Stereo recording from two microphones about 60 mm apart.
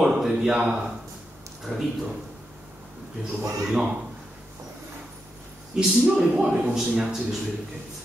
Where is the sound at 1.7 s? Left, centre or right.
Centre.